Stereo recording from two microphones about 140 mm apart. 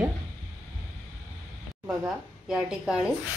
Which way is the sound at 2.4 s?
5° right (ahead or behind).